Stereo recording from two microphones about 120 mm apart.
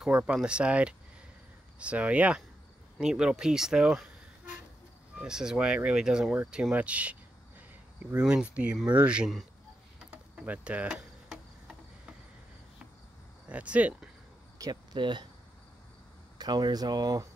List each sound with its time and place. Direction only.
0.0 s speech: 5° right (ahead or behind)
9.9 s cricket: 10° right (ahead or behind)
13.5 s speech: 10° right (ahead or behind)
14.6 s speech: 35° right (ahead or behind)
16.3 s speech: 35° right (ahead or behind)